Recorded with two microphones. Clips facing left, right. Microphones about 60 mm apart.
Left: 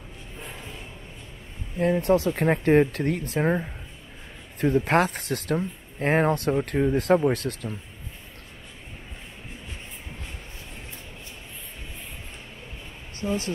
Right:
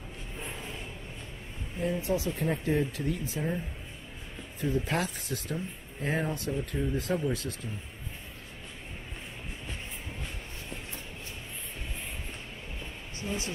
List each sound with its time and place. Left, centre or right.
1.8 s speech: left
13.2 s speech: centre